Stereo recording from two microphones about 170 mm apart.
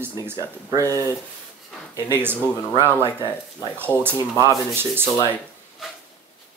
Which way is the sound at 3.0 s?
25° left (ahead or behind).